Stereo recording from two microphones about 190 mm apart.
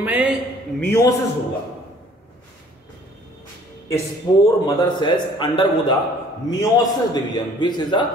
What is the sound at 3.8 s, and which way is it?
A man's voice, 15° left (ahead or behind).